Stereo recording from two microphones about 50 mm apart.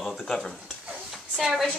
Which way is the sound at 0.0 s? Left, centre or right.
Centre.